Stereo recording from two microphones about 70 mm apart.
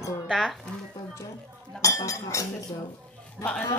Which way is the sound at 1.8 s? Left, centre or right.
Left.